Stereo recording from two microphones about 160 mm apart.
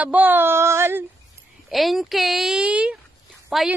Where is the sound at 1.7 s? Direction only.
Centre (ahead or behind).